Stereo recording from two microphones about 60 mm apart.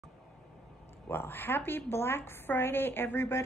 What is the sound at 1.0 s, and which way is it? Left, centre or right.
A woman's voice, left.